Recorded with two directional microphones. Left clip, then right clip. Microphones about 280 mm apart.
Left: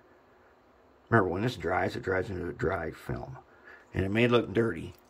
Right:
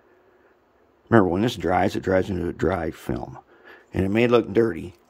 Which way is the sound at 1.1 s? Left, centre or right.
Right.